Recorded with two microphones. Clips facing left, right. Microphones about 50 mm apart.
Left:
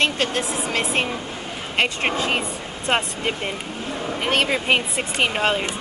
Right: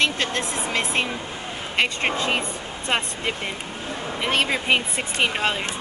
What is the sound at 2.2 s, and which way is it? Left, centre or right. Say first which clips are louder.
Speech: left 1 dB; left.